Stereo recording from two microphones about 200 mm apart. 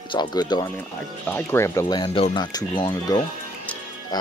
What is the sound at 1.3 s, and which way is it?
Speech, 10° left (ahead or behind).